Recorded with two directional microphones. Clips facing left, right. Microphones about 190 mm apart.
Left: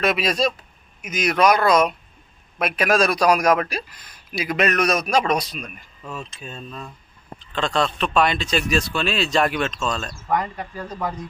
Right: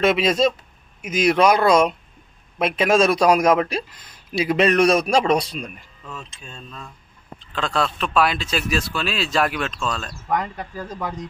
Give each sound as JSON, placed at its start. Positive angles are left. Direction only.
{"t": 0.0, "sound": "a man's voice", "side_deg": -25}
{"t": 6.0, "sound": "speech", "side_deg": 5}
{"t": 7.5, "sound": "speech", "side_deg": -5}